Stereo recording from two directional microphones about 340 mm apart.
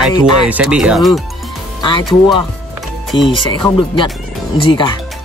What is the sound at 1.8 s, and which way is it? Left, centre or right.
Speech, centre.